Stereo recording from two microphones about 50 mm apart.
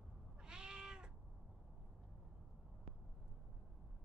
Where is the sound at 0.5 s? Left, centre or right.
Centre.